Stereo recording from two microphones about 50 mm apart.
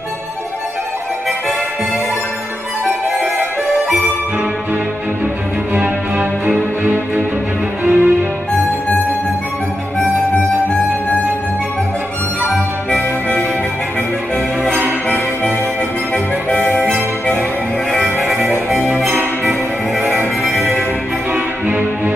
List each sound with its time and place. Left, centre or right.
6.1 s music: right
12.9 s music: left
16.4 s music: left
18.0 s music: centre
20.4 s music: centre
21.3 s music: right